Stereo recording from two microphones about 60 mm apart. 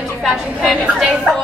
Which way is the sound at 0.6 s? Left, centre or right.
Centre.